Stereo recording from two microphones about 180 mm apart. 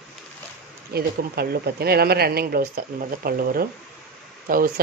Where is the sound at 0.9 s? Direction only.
60° right (ahead or behind).